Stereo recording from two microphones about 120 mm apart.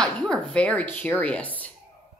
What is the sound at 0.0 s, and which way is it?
Speech, 5° left (ahead or behind).